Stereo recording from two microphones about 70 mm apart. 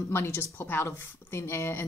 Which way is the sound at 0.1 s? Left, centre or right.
Left.